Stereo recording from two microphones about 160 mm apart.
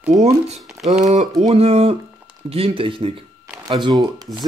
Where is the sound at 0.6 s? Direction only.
Centre (ahead or behind).